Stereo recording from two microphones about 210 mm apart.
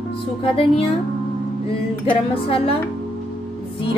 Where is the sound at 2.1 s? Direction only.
25° left (ahead or behind).